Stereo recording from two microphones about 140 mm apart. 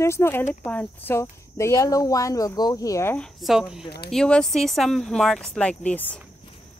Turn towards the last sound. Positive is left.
turn(degrees=10)  # may be behind; listen again after turning